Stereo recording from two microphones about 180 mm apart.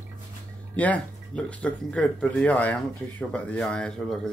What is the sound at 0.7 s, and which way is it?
Speech, 5° left (ahead or behind).